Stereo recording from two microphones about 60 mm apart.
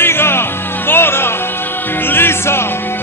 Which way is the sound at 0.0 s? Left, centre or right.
Left.